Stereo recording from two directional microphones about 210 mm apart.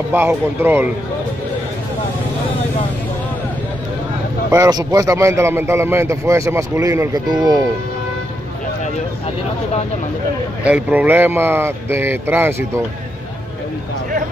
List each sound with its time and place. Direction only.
0.1 s speech: 10° right (ahead or behind)
4.5 s speech: 15° right (ahead or behind)
10.6 s speech: 5° right (ahead or behind)